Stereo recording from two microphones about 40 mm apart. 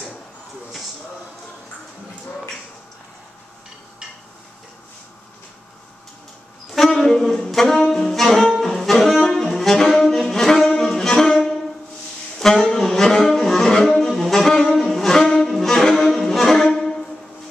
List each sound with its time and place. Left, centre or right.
6.7 s saxophone: centre
10.8 s music: centre
14.0 s saxophone: centre
16.7 s music: centre